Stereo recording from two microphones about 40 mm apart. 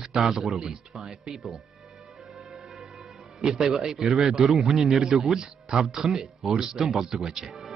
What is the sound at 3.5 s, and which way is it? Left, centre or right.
A man's voice, centre.